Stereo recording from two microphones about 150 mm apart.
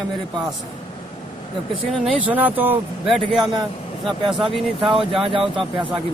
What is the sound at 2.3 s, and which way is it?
Speech, 10° right (ahead or behind).